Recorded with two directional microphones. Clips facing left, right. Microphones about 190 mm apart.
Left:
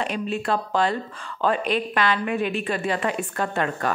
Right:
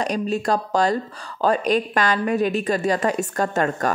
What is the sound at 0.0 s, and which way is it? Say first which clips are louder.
A woman's voice: right 4 dB; 40° right (ahead or behind).